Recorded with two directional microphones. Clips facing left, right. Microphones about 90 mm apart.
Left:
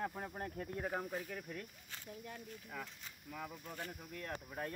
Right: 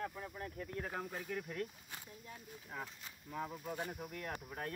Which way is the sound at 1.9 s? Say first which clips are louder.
Right 2 dB; 15° right (ahead or behind).